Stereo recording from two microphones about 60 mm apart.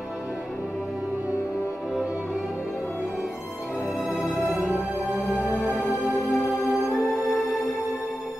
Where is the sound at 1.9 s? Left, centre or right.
Centre.